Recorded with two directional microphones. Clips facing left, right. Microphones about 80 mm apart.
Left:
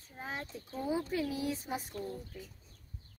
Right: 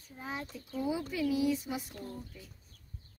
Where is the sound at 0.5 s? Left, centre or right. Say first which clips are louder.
Even; left.